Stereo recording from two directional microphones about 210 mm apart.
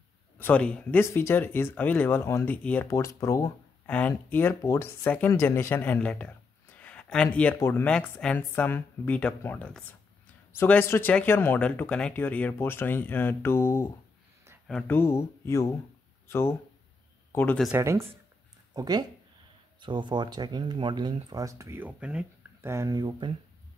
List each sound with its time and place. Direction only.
0.4 s speech: 5° left (ahead or behind)
17.6 s speech: 10° right (ahead or behind)